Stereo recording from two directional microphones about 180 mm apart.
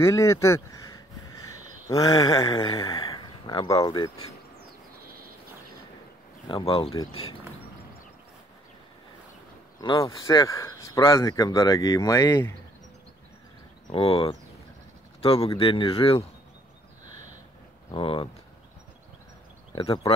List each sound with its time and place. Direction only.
0.0 s speech: 15° left (ahead or behind)
6.4 s speech: 30° left (ahead or behind)
9.8 s speech: 20° left (ahead or behind)
13.9 s speech: 30° left (ahead or behind)
17.9 s speech: 30° left (ahead or behind)
19.7 s speech: 30° left (ahead or behind)